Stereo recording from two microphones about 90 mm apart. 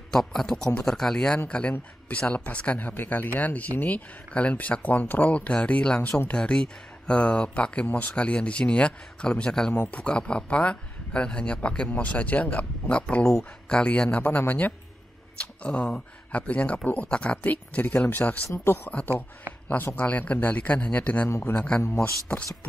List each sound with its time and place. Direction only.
0.1 s speech: 5° left (ahead or behind)
21.8 s speech: 30° left (ahead or behind)